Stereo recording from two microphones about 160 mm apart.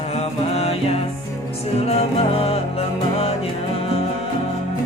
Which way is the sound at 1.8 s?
40° left (ahead or behind).